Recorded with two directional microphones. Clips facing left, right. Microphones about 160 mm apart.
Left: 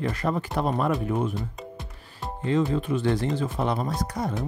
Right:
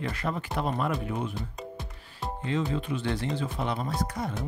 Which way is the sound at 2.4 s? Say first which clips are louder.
Left 6 dB; 45° left (ahead or behind).